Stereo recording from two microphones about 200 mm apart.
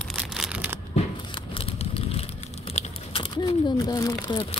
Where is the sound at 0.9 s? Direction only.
30° left (ahead or behind).